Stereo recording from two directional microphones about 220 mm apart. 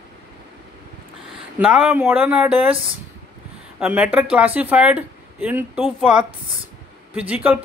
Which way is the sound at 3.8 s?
5° right (ahead or behind).